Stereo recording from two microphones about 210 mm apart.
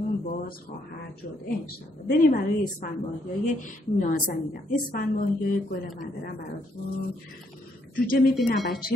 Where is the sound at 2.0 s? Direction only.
45° left (ahead or behind).